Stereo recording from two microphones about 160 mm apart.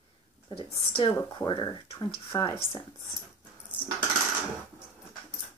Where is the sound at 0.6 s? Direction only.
35° left (ahead or behind).